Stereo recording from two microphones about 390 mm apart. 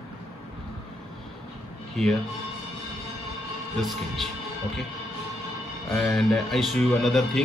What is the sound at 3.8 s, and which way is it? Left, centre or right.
Speech, centre.